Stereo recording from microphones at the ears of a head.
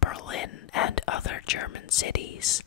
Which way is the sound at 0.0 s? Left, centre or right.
Left.